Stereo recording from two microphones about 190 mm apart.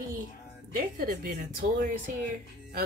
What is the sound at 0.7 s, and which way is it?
Speech, 50° right (ahead or behind).